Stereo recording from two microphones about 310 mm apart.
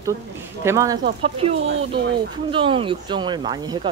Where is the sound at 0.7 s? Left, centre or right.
Centre.